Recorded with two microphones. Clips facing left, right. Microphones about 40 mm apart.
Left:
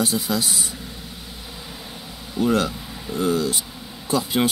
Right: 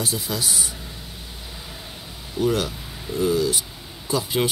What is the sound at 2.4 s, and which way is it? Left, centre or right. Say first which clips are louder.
Speech: left 2 dB; left.